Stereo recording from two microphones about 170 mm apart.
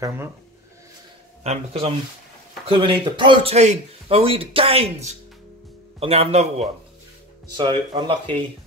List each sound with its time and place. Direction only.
1.4 s a man's voice: 40° right (ahead or behind)
7.5 s speech: 30° right (ahead or behind)